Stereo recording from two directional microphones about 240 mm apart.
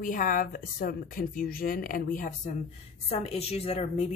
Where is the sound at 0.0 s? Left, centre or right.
Left.